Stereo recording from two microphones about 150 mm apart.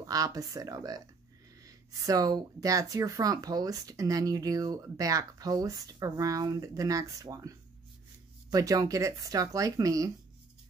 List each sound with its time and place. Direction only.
0.0 s speech: 25° right (ahead or behind)